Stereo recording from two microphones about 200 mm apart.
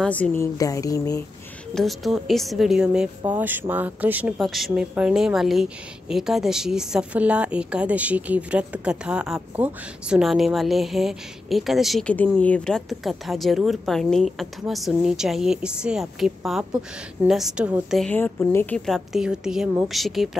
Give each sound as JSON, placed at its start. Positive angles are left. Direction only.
{"t": 0.0, "sound": "speech", "side_deg": 5}
{"t": 1.8, "sound": "speech", "side_deg": 0}